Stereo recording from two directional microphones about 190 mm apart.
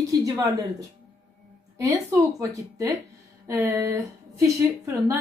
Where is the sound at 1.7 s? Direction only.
15° right (ahead or behind).